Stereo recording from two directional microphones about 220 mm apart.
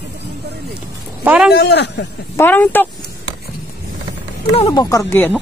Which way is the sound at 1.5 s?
50° left (ahead or behind).